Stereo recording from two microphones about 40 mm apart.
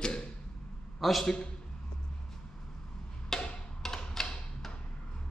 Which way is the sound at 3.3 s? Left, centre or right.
Centre.